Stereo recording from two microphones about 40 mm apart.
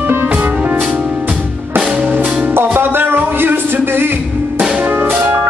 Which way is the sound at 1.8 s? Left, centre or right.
Centre.